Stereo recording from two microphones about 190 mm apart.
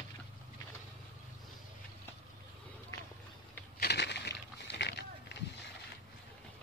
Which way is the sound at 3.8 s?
60° left (ahead or behind).